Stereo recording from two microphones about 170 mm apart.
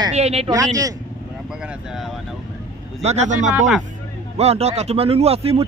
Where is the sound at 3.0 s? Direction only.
40° right (ahead or behind).